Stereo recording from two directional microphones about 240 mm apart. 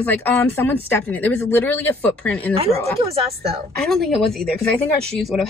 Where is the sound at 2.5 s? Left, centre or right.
Right.